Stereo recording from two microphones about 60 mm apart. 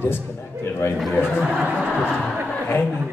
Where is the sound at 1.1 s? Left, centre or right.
Left.